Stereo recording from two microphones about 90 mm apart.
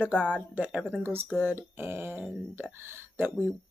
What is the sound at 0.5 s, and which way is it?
Speech, 15° right (ahead or behind).